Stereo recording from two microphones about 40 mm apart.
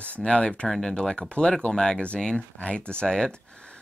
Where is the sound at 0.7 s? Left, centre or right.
Centre.